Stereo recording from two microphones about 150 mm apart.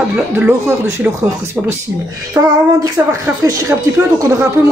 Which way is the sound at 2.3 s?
20° right (ahead or behind).